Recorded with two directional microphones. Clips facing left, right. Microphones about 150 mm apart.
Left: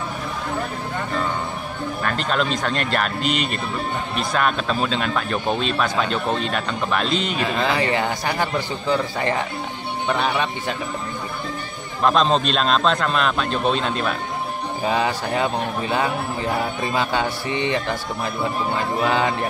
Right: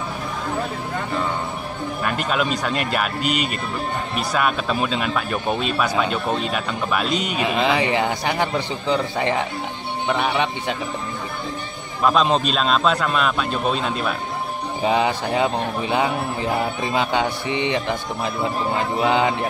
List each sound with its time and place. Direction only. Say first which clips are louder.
2.0 s a man's voice: even; 10° right (ahead or behind)
7.4 s a man's voice: right 3 dB; 15° right (ahead or behind)
12.0 s a man's voice: even; 5° right (ahead or behind)
14.9 s a man's voice: right 2 dB; 20° right (ahead or behind)
19.0 s a man's voice: right 2 dB; 20° right (ahead or behind)